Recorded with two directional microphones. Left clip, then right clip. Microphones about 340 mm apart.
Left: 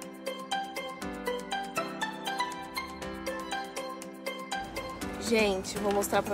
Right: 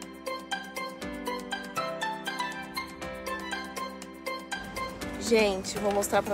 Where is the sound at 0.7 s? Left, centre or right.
Centre.